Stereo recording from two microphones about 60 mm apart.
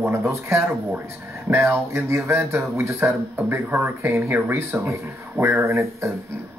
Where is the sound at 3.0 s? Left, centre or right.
Right.